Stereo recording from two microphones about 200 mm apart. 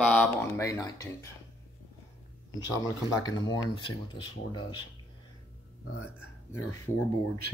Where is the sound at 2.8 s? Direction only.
20° left (ahead or behind).